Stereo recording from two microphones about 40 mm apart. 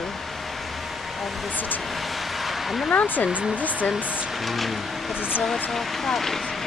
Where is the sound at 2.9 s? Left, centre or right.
Left.